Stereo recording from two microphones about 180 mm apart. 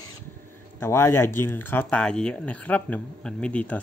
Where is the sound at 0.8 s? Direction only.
15° left (ahead or behind).